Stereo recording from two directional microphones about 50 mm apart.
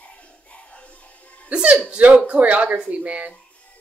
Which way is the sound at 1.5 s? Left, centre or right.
Right.